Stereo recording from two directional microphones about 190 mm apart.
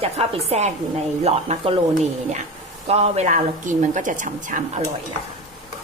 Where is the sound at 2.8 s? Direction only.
35° right (ahead or behind).